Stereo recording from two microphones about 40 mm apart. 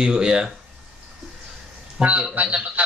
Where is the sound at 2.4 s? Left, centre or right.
Right.